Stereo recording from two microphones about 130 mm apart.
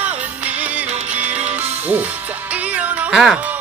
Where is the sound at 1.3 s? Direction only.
60° right (ahead or behind).